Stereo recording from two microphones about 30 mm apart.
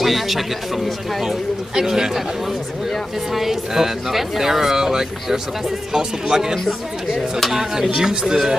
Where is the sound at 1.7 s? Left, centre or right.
Centre.